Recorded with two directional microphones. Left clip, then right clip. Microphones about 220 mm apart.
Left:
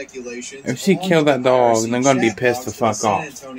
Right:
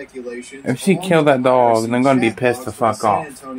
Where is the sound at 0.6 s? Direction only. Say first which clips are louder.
Right 1 dB; 10° right (ahead or behind).